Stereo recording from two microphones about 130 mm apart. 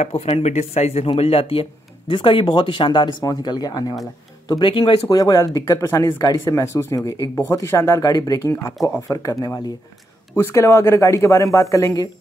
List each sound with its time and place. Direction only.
0.0 s speech: 55° left (ahead or behind)
5.0 s speech: 30° left (ahead or behind)